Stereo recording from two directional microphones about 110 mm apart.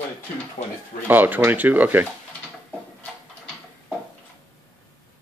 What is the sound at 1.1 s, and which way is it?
Speech, 15° right (ahead or behind).